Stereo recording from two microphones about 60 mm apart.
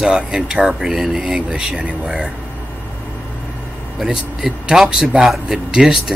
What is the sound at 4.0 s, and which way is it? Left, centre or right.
Speech, centre.